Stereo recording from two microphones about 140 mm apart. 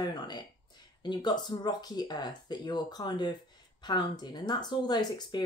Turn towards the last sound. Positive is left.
turn(degrees=30)  # may be behind; listen again after turning